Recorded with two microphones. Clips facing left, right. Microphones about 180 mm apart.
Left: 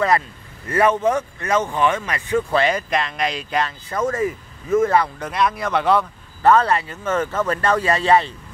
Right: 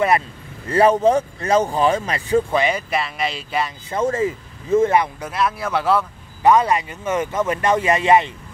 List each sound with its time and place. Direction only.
0.7 s speech: 30° right (ahead or behind)
2.5 s speech: 10° right (ahead or behind)
3.9 s speech: 25° right (ahead or behind)
5.2 s speech: 5° right (ahead or behind); by 8.3 s 20° right (ahead or behind)